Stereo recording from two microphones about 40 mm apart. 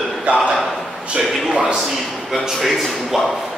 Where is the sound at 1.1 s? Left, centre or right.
Right.